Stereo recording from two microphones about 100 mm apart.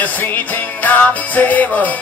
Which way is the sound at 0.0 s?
15° left (ahead or behind).